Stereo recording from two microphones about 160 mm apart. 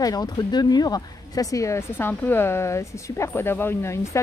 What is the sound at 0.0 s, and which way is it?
Speech, 25° left (ahead or behind).